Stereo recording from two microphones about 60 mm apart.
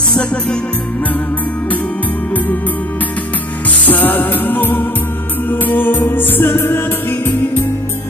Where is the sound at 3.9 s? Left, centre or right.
Left.